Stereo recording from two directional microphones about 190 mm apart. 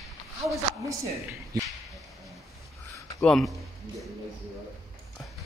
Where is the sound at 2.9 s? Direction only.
15° left (ahead or behind).